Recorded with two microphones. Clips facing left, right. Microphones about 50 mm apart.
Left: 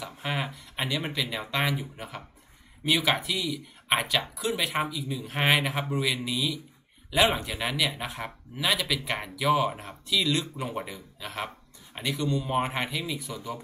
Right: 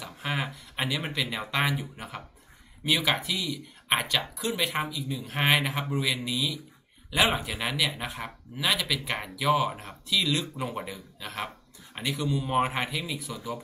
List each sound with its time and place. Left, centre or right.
0.0 s speech: centre